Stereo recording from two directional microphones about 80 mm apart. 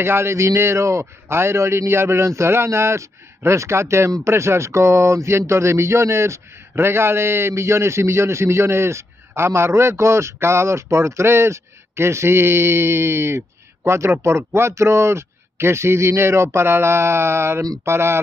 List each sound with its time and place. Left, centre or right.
0.0 s speech: right